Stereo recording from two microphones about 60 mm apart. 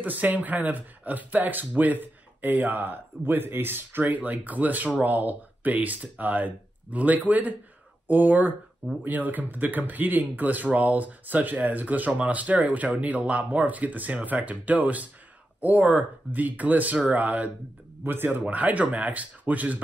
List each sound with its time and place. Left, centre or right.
0.0 s speech: right